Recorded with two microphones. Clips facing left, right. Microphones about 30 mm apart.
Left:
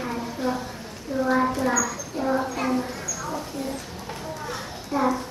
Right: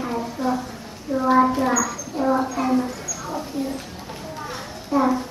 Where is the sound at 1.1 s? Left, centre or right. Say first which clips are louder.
Right 5 dB; centre.